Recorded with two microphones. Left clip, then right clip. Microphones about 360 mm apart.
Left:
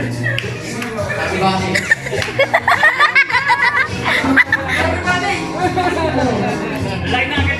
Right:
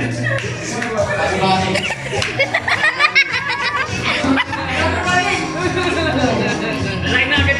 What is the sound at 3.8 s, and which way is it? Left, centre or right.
Music, centre.